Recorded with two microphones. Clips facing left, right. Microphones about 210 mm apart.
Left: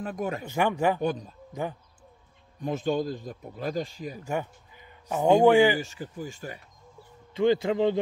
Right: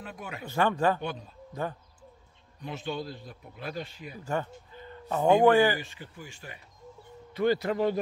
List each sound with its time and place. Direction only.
0.0 s a man's voice: 45° left (ahead or behind)
0.5 s speech: 15° left (ahead or behind)
1.0 s a man's voice: 45° left (ahead or behind)
1.5 s speech: 15° left (ahead or behind)
2.6 s a man's voice: 45° left (ahead or behind)
4.3 s speech: 10° left (ahead or behind)
5.8 s a man's voice: 45° left (ahead or behind)
7.3 s a man's voice: 20° left (ahead or behind)